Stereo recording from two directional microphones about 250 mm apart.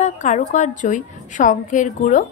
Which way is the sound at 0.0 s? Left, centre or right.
Left.